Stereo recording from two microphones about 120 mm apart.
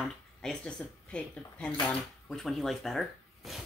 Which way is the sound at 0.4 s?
5° left (ahead or behind).